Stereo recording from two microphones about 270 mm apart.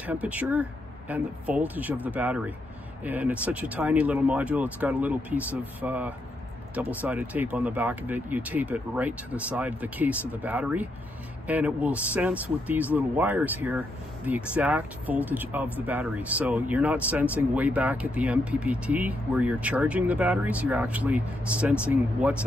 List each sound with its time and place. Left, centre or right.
0.0 s speech: centre